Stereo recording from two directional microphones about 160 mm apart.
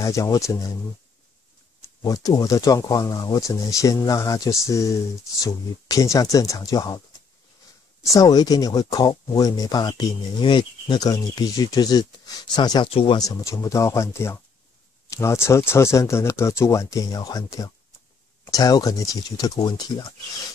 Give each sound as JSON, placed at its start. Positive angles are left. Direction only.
{"t": 0.0, "sound": "speech", "side_deg": 20}
{"t": 1.8, "sound": "speech", "side_deg": 20}
{"t": 8.0, "sound": "speech", "side_deg": 20}